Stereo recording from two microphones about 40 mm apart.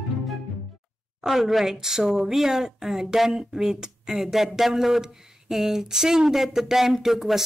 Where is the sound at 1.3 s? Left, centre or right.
Centre.